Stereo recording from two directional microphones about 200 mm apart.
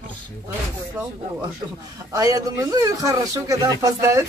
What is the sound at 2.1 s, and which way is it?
Speech, 20° right (ahead or behind).